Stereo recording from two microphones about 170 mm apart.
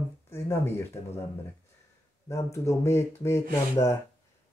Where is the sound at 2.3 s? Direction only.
20° left (ahead or behind).